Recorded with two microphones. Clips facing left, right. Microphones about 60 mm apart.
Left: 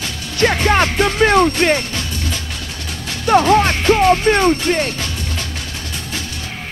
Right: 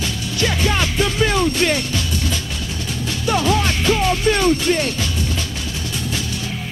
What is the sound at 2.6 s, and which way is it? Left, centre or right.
Music, left.